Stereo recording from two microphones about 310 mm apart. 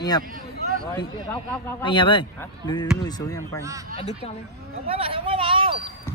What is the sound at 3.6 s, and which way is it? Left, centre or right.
Speech, centre.